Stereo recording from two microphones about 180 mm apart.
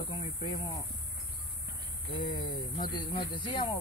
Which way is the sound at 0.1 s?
30° left (ahead or behind).